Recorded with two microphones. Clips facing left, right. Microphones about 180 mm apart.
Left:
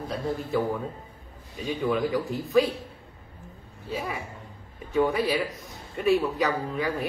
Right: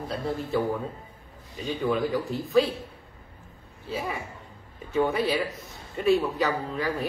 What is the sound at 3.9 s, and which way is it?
Speech, centre (ahead or behind).